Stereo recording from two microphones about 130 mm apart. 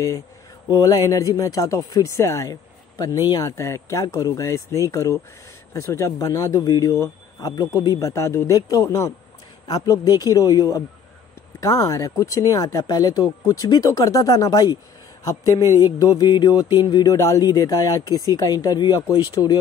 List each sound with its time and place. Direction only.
0.7 s speech: 30° left (ahead or behind)